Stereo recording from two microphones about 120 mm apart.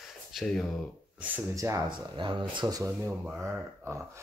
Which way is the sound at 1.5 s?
25° right (ahead or behind).